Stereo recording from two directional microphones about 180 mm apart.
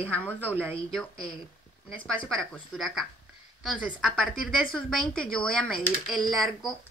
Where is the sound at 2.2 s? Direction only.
5° left (ahead or behind).